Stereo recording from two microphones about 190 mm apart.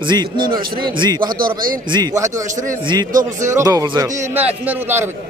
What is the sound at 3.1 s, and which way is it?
Speech, 45° right (ahead or behind).